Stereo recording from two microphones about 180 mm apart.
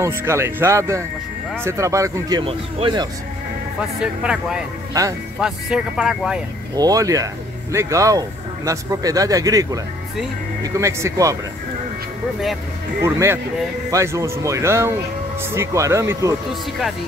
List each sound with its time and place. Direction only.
0.0 s speech: 15° right (ahead or behind)
4.0 s speech: 5° right (ahead or behind)
6.7 s speech: 20° right (ahead or behind)
13.0 s speech: 15° right (ahead or behind)